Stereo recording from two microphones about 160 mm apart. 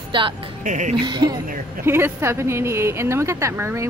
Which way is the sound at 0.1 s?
30° right (ahead or behind).